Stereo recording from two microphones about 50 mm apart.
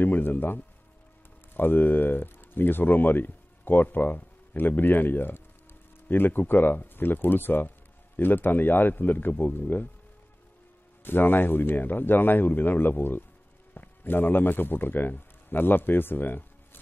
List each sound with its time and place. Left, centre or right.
0.0 s a man's voice: left
11.1 s a man's voice: left